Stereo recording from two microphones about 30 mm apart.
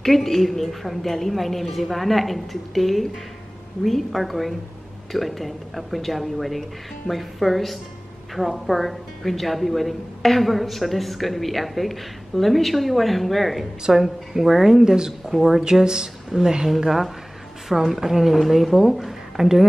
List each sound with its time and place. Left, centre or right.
0.0 s a woman's voice: centre
13.9 s a woman's voice: centre
15.3 s a woman's voice: centre
15.6 s a woman's voice: right
16.7 s a woman's voice: centre